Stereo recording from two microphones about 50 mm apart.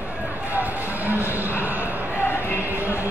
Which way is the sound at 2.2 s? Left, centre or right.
Left.